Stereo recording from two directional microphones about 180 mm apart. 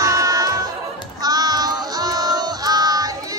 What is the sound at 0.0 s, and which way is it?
Music, 20° right (ahead or behind).